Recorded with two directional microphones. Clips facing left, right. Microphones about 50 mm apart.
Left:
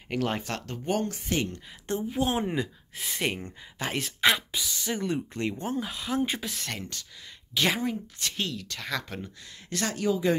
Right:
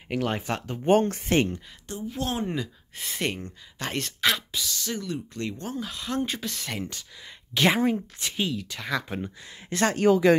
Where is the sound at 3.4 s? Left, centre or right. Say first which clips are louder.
Even; left.